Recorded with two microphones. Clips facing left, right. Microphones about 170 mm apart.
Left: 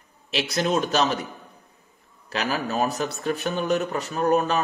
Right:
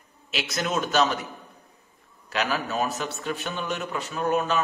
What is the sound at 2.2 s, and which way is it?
A man's voice, 35° left (ahead or behind).